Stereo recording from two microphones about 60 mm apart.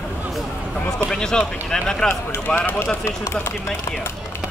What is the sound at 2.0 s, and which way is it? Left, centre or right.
Speech, left.